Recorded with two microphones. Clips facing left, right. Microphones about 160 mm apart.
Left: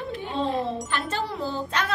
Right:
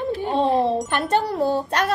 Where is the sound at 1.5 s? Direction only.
60° right (ahead or behind).